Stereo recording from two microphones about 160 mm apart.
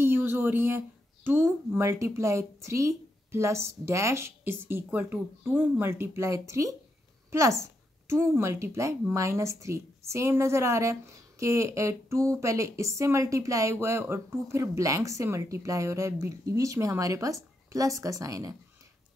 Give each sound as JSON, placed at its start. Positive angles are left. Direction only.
{"t": 0.0, "sound": "a woman's voice", "side_deg": -15}